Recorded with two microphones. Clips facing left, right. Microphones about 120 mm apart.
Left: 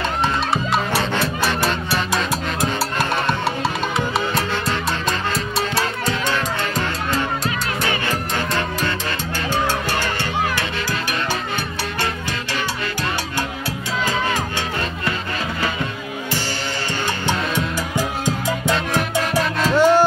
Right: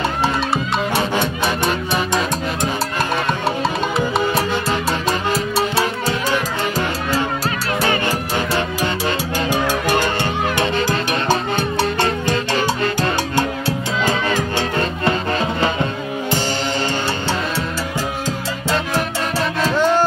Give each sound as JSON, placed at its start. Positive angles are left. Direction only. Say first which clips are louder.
{"t": 1.2, "sound": "music", "louder": "right 1 dB", "side_deg": 0}
{"t": 9.5, "sound": "music", "louder": "right 2 dB", "side_deg": -15}
{"t": 13.4, "sound": "music", "louder": "right 6 dB", "side_deg": -25}
{"t": 15.6, "sound": "music", "louder": "right 5 dB", "side_deg": -25}
{"t": 19.6, "sound": "music", "louder": "left 2 dB", "side_deg": 5}